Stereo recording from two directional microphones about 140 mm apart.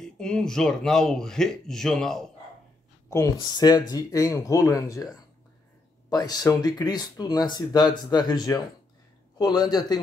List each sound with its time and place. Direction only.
0.0 s a man's voice: 5° left (ahead or behind)
3.1 s speech: 25° left (ahead or behind)
6.0 s speech: 30° left (ahead or behind)